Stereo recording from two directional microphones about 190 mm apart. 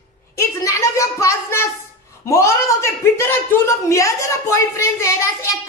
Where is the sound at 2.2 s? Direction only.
15° left (ahead or behind).